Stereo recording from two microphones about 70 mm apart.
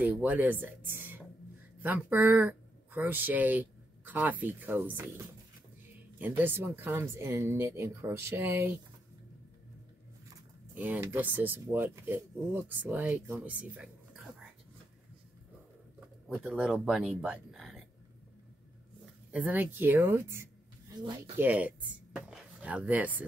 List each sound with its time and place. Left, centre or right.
0.0 s a woman's voice: right
10.7 s speech: right
16.4 s speech: centre
17.5 s a sound: centre
19.3 s speech: right
21.4 s speech: right